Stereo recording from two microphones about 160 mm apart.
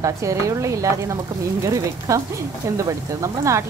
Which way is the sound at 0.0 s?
20° right (ahead or behind).